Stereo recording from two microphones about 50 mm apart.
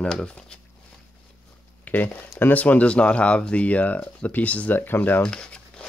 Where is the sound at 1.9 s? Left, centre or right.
Left.